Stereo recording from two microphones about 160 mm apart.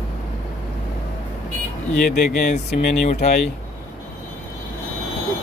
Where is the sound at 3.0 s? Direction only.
50° left (ahead or behind).